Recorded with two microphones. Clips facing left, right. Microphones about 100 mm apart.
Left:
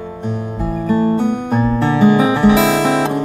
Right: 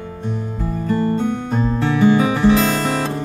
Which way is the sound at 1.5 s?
70° left (ahead or behind).